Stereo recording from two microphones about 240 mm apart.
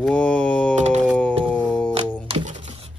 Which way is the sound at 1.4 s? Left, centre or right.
Centre.